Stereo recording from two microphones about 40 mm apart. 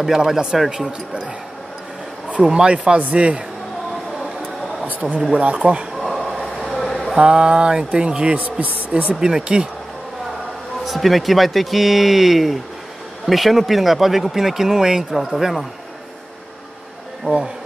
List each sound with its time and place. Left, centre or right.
0.0 s speech: centre
2.5 s a man's voice: right
5.3 s a man's voice: right
5.9 s a sound: centre
7.2 s speech: right
9.1 s speech: centre
10.8 s speech: centre